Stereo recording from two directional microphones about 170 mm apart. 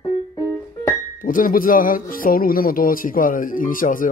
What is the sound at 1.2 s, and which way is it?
Speech, 55° left (ahead or behind).